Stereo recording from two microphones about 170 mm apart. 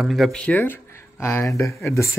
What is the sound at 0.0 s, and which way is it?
Speech, centre (ahead or behind).